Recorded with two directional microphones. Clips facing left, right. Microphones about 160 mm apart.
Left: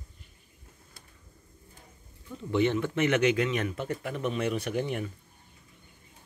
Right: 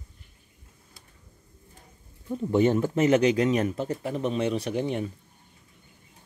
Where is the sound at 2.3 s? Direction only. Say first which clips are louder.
Right 4 dB; 40° right (ahead or behind).